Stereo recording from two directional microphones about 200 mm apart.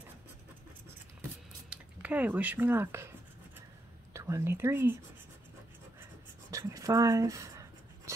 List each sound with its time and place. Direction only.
1.7 s speech: 5° right (ahead or behind)
4.1 s speech: 15° right (ahead or behind)
6.5 s writing: 15° right (ahead or behind)